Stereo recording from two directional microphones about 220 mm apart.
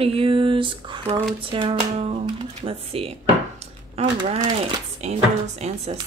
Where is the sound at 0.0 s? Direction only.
25° right (ahead or behind).